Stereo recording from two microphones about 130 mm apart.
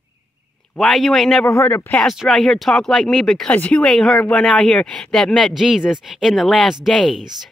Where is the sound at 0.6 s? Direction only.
5° left (ahead or behind).